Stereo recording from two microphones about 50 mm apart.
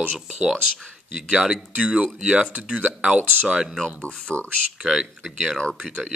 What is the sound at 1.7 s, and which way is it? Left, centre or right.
Speech, right.